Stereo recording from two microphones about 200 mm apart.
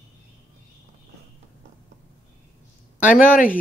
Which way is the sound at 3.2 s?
40° left (ahead or behind).